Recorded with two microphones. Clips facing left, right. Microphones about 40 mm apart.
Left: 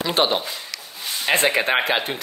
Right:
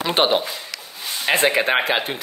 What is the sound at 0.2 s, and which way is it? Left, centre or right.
Speech, right.